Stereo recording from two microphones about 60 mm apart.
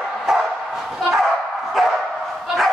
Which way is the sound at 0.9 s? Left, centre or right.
Centre.